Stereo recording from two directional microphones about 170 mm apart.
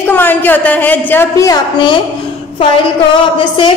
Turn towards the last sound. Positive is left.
turn(degrees=30)  # may be behind; listen again after turning